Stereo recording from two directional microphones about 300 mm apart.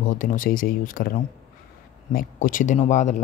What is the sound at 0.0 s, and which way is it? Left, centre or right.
Speech, left.